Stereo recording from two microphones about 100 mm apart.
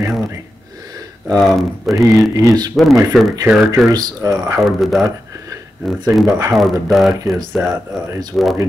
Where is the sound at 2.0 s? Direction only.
25° right (ahead or behind).